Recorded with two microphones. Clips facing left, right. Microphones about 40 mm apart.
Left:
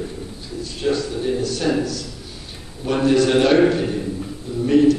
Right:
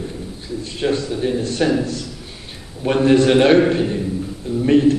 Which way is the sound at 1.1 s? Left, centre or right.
Centre.